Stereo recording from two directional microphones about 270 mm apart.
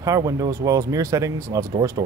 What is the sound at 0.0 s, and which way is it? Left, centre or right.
Speech, centre.